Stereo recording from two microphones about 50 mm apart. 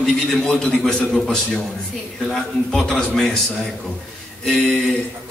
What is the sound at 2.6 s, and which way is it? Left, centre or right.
Speech, centre.